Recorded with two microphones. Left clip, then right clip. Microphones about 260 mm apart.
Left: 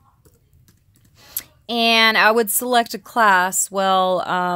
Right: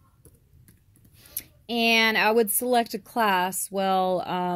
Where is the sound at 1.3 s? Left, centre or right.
Centre.